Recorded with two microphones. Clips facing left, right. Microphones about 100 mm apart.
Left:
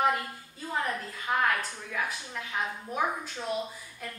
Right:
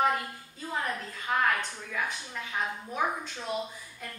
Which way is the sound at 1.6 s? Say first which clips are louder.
Even; 5° left (ahead or behind).